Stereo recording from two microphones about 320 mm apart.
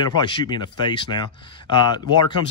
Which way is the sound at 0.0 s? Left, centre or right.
Centre.